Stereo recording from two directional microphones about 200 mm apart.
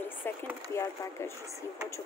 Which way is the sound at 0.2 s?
10° left (ahead or behind).